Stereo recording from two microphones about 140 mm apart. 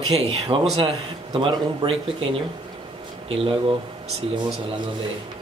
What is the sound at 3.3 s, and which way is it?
Speech, 40° right (ahead or behind).